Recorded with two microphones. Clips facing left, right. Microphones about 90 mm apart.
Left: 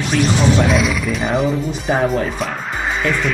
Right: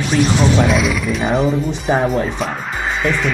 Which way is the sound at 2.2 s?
Centre (ahead or behind).